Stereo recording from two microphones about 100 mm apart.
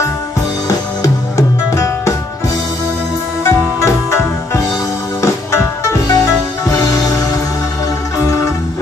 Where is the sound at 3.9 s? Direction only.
30° left (ahead or behind).